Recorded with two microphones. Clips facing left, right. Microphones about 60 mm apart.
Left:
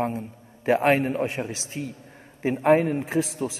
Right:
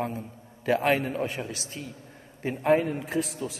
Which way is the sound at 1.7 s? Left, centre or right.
Left.